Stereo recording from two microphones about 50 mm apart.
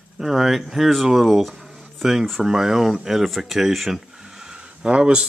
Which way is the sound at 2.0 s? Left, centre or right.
Centre.